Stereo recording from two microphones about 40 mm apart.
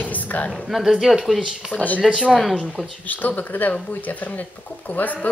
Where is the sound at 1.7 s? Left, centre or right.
Left.